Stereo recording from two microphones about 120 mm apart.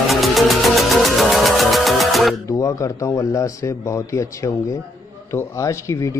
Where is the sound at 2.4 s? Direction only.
25° left (ahead or behind).